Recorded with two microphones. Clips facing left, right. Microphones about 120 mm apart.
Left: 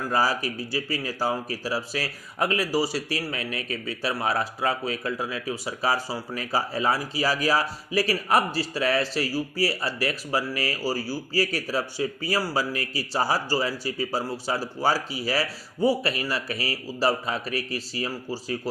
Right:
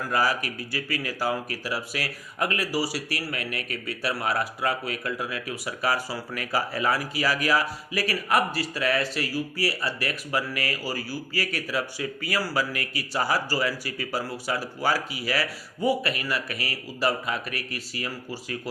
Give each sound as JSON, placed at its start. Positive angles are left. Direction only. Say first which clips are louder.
{"t": 0.1, "sound": "speech", "louder": "left 1 dB", "side_deg": 30}